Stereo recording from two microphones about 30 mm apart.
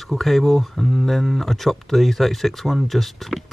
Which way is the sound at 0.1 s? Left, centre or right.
Centre.